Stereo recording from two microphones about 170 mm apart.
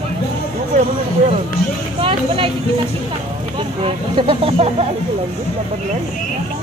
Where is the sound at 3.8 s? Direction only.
35° right (ahead or behind).